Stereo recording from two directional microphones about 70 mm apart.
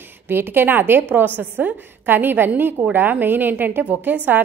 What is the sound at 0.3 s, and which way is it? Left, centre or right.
A woman's voice, right.